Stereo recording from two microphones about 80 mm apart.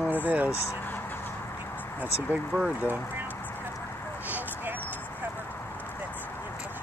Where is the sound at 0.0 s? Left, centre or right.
Right.